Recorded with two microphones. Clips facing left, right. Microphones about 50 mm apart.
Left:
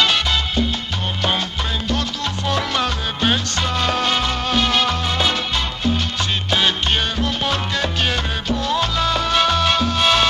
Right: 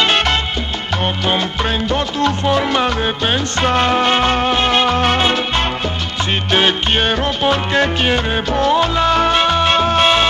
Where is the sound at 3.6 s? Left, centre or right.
Right.